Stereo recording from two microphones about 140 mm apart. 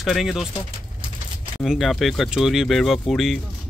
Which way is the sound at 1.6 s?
Centre (ahead or behind).